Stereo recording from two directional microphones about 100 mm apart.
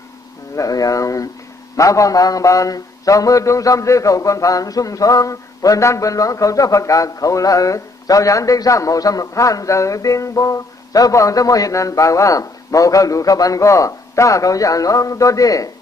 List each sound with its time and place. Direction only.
0.6 s mantra: 35° left (ahead or behind)